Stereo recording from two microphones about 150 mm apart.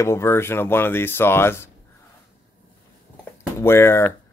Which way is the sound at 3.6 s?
15° left (ahead or behind).